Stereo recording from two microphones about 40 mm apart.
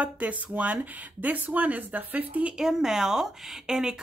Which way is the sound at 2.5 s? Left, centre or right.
Centre.